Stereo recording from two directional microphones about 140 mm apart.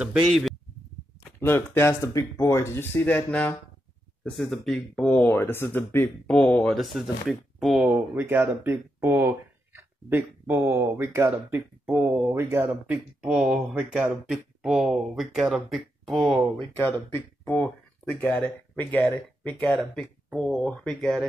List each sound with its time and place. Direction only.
0.0 s speech: centre (ahead or behind)
1.4 s speech: 15° left (ahead or behind)
5.3 s speech: 15° left (ahead or behind); by 11.6 s 20° right (ahead or behind)
11.8 s speech: centre (ahead or behind)
12.4 s speech: 15° right (ahead or behind); by 16.4 s centre (ahead or behind)
18.2 s speech: 10° left (ahead or behind)